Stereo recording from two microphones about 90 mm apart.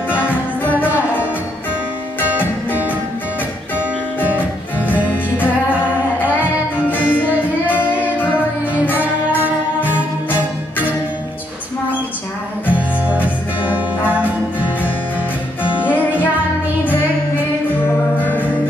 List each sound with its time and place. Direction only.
0.2 s music: 20° left (ahead or behind)
4.7 s music: 20° left (ahead or behind)
6.9 s music: 20° left (ahead or behind)
8.9 s music: 20° right (ahead or behind)
12.6 s music: 15° right (ahead or behind)
15.8 s music: 20° left (ahead or behind)
18.2 s music: 20° left (ahead or behind)